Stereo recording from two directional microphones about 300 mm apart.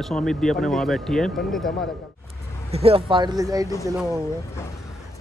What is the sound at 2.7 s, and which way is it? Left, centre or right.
Speech, centre.